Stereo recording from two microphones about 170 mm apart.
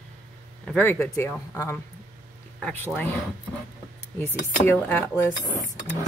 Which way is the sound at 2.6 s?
5° left (ahead or behind).